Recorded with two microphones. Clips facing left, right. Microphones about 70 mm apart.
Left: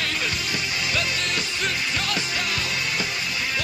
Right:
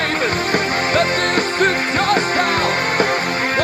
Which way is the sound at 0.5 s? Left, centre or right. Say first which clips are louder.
Right 12 dB; right.